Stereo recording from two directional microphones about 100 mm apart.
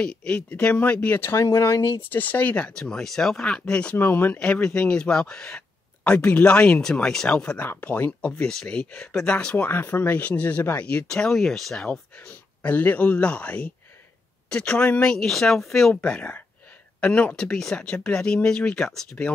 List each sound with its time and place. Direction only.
0.0 s speech: 10° left (ahead or behind)
12.2 s speech: 15° left (ahead or behind)